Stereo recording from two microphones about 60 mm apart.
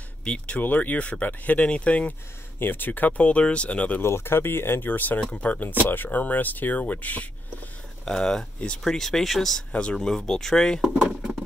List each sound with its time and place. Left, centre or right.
0.2 s speech: centre
0.6 s speech: left
2.6 s speech: left
4.0 s speech: left
8.0 s speech: centre
9.7 s speech: centre